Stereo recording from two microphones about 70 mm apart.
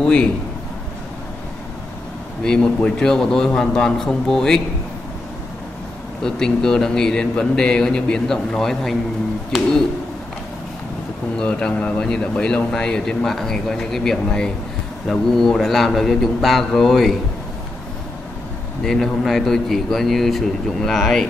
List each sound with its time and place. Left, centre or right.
0.0 s a man's voice: centre
2.4 s speech: centre
6.2 s speech: centre
11.3 s a man's voice: centre
18.9 s a man's voice: centre